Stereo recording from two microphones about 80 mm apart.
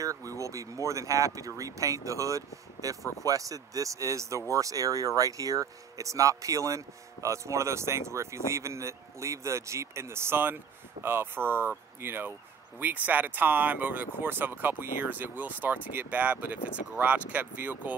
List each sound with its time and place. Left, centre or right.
0.0 s speech: right; by 17.9 s centre